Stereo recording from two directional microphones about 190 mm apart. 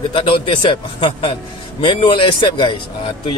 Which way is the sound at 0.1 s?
25° left (ahead or behind).